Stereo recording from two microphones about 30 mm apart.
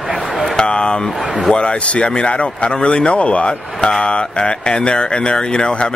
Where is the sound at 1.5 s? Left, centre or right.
Left.